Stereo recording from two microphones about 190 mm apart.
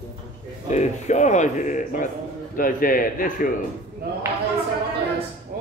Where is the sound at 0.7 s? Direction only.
40° left (ahead or behind).